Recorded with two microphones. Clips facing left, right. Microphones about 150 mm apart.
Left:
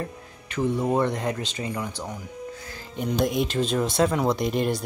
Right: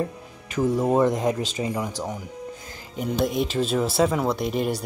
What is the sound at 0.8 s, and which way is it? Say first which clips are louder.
Speech: right 4 dB; 10° right (ahead or behind).